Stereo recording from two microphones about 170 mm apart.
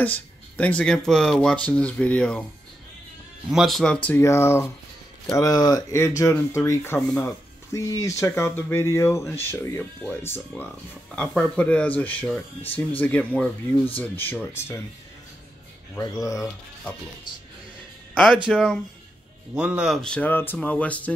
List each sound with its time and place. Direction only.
0.0 s speech: 10° left (ahead or behind)
3.4 s speech: centre (ahead or behind); by 14.8 s 15° left (ahead or behind)
16.0 s speech: 20° left (ahead or behind)
18.1 s speech: centre (ahead or behind)